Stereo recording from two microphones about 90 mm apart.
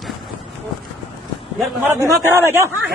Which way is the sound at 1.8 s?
30° right (ahead or behind).